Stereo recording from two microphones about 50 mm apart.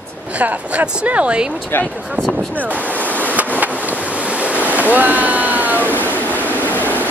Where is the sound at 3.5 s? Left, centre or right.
Right.